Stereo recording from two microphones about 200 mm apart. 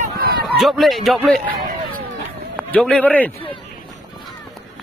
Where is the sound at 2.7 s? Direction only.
5° left (ahead or behind).